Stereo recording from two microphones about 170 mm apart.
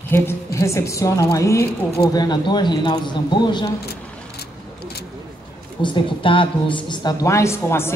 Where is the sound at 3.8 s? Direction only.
70° left (ahead or behind).